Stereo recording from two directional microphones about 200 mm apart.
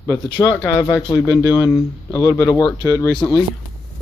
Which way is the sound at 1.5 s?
20° left (ahead or behind).